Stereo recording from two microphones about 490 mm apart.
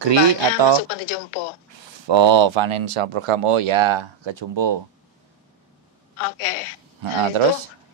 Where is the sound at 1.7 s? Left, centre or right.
Right.